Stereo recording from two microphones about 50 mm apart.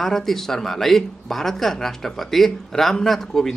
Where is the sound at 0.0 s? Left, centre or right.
Centre.